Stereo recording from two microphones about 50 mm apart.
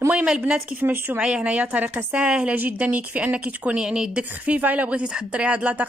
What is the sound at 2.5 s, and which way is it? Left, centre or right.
Speech, right.